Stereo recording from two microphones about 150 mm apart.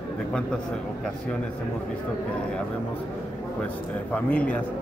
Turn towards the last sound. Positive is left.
turn(degrees=10)  # may be behind; listen again after turning